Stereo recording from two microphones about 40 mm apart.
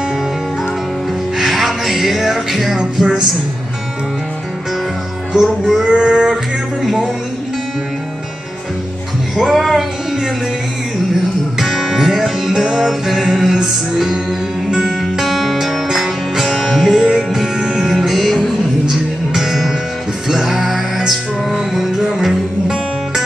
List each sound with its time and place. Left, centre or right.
1.4 s music: centre
5.3 s music: centre
6.8 s speech: centre
9.4 s music: centre
11.5 s music: centre
16.4 s music: centre
16.9 s music: centre
18.9 s music: centre